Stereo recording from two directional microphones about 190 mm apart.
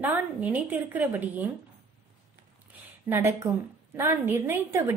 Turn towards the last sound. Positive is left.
turn(degrees=-10)  # may be behind; listen again after turning